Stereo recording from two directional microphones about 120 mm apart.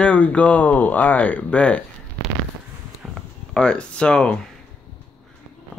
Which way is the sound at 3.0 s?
5° right (ahead or behind).